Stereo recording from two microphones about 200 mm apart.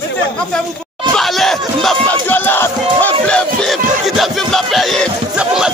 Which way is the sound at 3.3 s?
Centre (ahead or behind).